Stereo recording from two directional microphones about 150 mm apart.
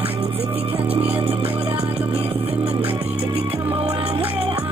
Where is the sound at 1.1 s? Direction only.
40° right (ahead or behind).